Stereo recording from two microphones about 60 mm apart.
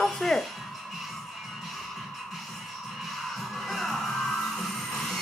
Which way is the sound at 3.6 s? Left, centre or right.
Centre.